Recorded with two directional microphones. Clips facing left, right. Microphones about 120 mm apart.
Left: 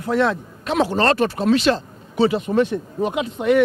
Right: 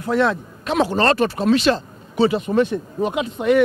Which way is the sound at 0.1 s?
15° right (ahead or behind).